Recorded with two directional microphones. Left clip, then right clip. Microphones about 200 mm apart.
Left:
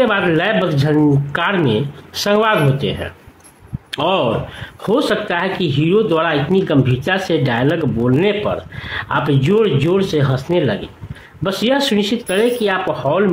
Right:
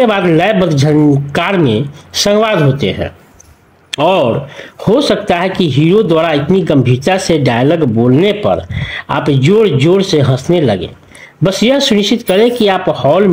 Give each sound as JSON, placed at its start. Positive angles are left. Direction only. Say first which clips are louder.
{"t": 0.0, "sound": "speech", "louder": "right 5 dB", "side_deg": -20}